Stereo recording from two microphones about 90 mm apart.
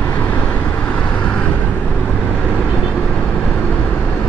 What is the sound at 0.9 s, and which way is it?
Vehicle, 15° left (ahead or behind).